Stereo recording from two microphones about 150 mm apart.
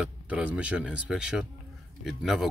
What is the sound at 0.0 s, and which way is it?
Speech, 10° right (ahead or behind).